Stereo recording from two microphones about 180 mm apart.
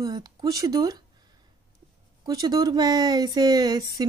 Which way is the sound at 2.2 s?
20° right (ahead or behind).